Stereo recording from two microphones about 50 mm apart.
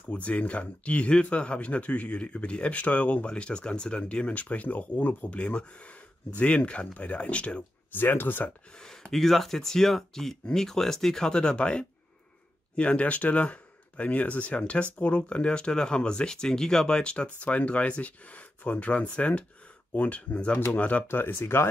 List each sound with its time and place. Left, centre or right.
0.1 s speech: left
5.4 s speech: left
7.9 s speech: left
8.7 s speech: centre; by 21.0 s left
21.1 s speech: left